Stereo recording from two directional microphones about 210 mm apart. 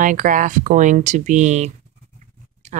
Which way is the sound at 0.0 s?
40° right (ahead or behind).